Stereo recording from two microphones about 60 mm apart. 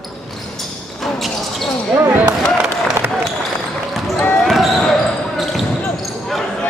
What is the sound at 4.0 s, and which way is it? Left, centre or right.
Basketball bounce, centre.